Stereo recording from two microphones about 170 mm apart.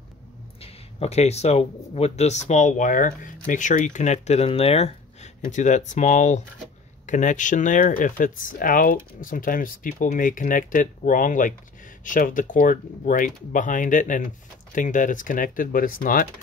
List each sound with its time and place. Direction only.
0.6 s speech: 35° left (ahead or behind); by 16.3 s 55° left (ahead or behind)